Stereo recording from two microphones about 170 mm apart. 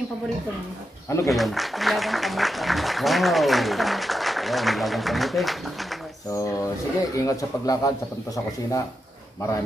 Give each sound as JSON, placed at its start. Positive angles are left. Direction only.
{"t": 1.0, "sound": "speech", "side_deg": 15}
{"t": 1.3, "sound": "speech", "side_deg": 0}
{"t": 6.3, "sound": "speech", "side_deg": 20}